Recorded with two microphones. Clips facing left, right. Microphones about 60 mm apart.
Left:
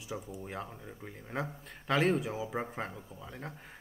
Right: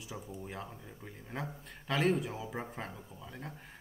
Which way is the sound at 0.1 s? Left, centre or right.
Centre.